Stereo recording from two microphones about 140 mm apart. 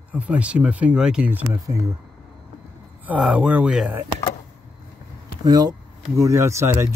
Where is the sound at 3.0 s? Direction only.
10° right (ahead or behind).